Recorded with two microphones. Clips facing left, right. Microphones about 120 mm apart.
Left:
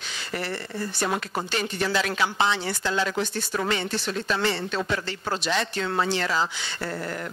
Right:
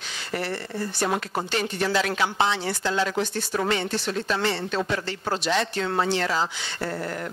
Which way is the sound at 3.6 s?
55° right (ahead or behind).